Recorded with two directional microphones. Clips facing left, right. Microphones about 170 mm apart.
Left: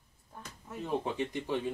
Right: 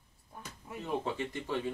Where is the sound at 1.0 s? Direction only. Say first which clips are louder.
Left 2 dB; 15° left (ahead or behind).